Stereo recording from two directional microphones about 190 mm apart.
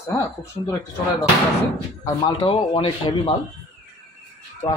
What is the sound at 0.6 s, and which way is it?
Speech, 20° left (ahead or behind).